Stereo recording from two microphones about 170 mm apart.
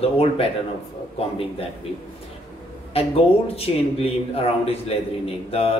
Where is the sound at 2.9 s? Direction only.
35° left (ahead or behind).